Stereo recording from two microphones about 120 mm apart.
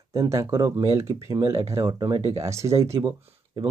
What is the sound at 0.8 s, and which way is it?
Speech, 50° right (ahead or behind).